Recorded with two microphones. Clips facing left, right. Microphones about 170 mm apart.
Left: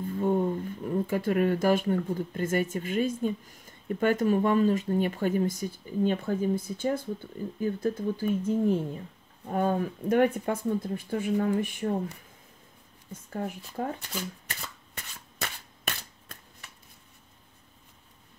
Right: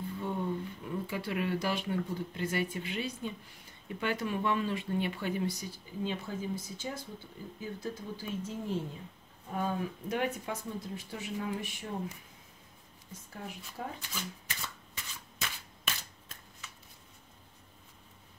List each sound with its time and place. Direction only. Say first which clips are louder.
0.0 s speech: left 9 dB; 45° left (ahead or behind)
13.3 s speech: left 10 dB; 55° left (ahead or behind)
14.5 s shuffling cards: left 2 dB; 55° left (ahead or behind)